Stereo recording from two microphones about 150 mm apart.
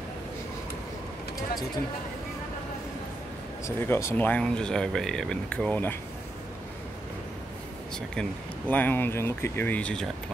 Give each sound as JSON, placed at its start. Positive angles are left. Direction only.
{"t": 3.6, "sound": "speech", "side_deg": 15}
{"t": 8.1, "sound": "speech", "side_deg": 10}